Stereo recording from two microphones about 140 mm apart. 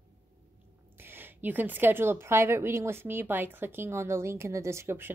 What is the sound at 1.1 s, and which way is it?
Speech, 15° right (ahead or behind).